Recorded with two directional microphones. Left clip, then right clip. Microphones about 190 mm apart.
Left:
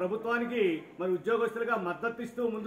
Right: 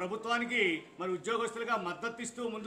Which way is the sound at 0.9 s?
25° right (ahead or behind).